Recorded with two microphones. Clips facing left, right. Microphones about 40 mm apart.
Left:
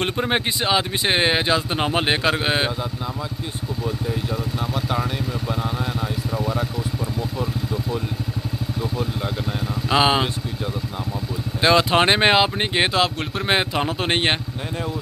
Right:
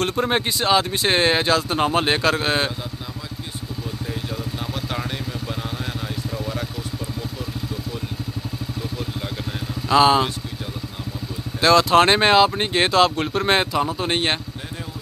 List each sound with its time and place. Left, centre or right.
0.0 s speech: centre
6.3 s vehicle: centre
9.8 s speech: centre
11.6 s speech: centre
13.8 s speech: left